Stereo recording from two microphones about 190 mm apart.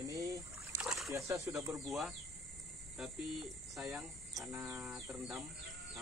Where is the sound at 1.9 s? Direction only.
Centre (ahead or behind).